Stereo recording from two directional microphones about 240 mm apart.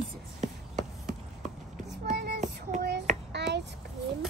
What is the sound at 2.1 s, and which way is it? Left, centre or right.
Child singing, right.